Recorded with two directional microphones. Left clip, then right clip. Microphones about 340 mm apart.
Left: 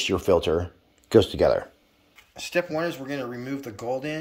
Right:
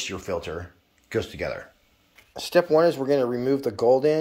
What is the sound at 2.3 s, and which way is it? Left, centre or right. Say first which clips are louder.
Speech: right 7 dB; centre.